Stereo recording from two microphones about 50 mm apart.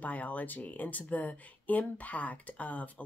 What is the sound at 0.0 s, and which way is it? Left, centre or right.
Speech, left.